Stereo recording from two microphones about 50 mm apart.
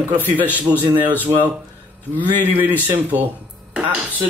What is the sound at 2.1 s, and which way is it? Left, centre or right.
Speech, right.